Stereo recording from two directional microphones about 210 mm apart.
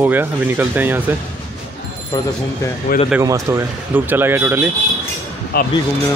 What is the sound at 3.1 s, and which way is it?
Speech, 15° right (ahead or behind).